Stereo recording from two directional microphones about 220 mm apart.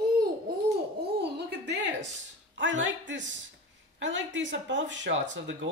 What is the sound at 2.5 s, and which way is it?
Speech, 55° right (ahead or behind).